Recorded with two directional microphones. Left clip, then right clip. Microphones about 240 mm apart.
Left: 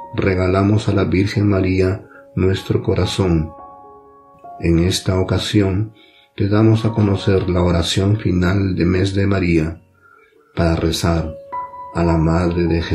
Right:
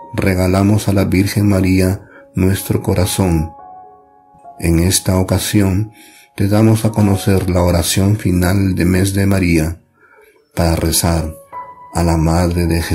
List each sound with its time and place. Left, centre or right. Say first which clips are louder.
0.1 s speech: right 1 dB; right
4.6 s speech: right 1 dB; right